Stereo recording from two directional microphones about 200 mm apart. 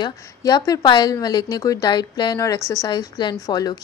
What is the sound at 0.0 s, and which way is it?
A woman's voice, 20° left (ahead or behind).